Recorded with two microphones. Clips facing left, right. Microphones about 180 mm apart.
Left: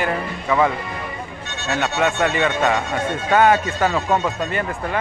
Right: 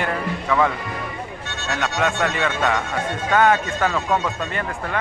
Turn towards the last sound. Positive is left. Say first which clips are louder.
# left 2 dB
turn(degrees=10)  # may be behind; listen again after turning